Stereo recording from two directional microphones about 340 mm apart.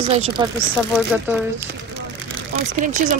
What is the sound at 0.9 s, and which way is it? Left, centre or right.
Speech, centre.